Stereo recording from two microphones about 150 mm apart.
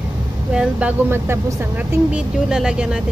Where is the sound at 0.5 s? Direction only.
10° right (ahead or behind).